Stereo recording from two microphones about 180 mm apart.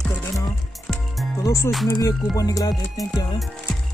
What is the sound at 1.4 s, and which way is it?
Music, 15° left (ahead or behind).